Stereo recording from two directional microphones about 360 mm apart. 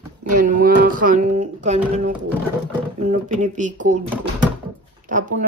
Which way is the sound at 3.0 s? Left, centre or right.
Centre.